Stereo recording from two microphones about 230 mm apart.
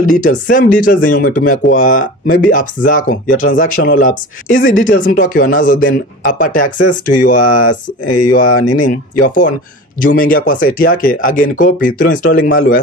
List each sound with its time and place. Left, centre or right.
0.0 s speech: left
8.7 s speech: left